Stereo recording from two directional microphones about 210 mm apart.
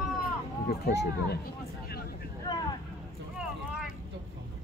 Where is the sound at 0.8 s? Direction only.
50° left (ahead or behind).